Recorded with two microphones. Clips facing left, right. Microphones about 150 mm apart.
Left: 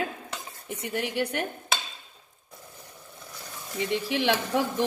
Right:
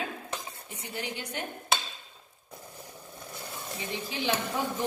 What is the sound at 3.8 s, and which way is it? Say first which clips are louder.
Speech: left 9 dB; 70° left (ahead or behind).